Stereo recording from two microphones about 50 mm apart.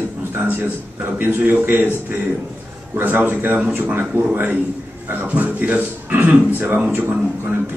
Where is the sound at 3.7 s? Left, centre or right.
Right.